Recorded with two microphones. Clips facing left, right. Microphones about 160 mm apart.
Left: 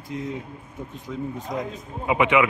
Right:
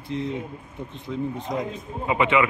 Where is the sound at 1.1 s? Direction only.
Centre (ahead or behind).